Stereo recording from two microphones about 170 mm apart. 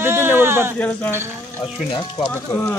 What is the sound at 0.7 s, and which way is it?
Speech, 10° left (ahead or behind).